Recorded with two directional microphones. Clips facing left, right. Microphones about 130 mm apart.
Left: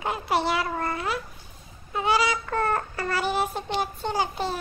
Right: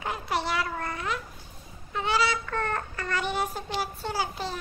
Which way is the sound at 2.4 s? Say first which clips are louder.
Left 5 dB; 35° left (ahead or behind).